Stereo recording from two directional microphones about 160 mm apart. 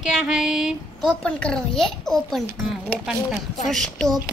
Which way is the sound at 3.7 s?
5° left (ahead or behind).